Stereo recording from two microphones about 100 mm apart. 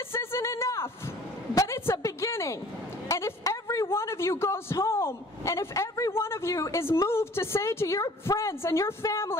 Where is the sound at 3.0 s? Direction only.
30° left (ahead or behind).